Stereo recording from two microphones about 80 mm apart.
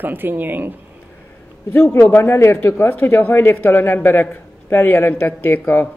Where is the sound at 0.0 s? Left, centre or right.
Right.